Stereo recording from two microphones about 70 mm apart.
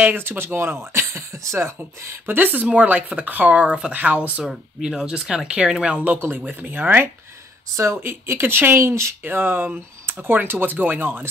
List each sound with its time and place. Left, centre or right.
0.0 s speech: right
1.8 s speech: right
4.4 s speech: centre; by 9.1 s right
9.2 s speech: right